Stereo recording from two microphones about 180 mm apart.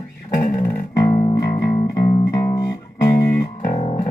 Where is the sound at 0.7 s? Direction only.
15° left (ahead or behind).